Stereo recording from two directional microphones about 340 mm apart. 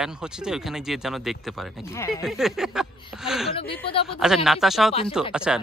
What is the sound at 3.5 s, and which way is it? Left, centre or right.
Speech, centre.